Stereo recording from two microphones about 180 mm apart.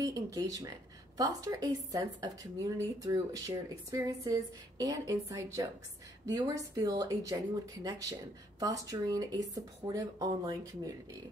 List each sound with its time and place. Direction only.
0.0 s a woman's voice: 20° right (ahead or behind)